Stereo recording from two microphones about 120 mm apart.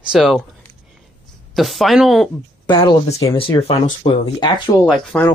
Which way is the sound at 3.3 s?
50° left (ahead or behind).